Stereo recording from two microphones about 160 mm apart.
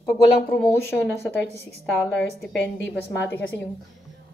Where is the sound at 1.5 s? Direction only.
90° left.